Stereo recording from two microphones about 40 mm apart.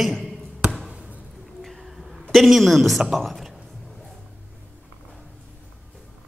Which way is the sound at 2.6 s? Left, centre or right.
Centre.